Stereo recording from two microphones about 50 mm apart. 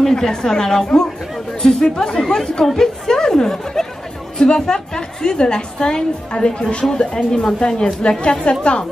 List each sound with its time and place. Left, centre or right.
0.1 s a woman's voice: centre